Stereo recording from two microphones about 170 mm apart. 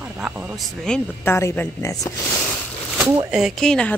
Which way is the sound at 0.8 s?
10° left (ahead or behind).